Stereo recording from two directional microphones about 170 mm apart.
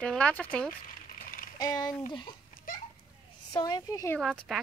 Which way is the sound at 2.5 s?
55° left (ahead or behind).